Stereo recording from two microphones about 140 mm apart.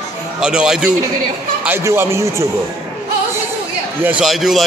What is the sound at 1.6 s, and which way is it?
Speech, 15° right (ahead or behind).